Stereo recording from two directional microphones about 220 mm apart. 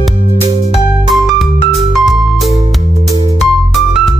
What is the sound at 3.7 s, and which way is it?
Music, centre (ahead or behind).